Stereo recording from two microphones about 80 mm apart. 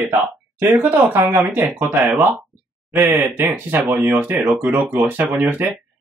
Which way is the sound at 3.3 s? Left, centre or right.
Right.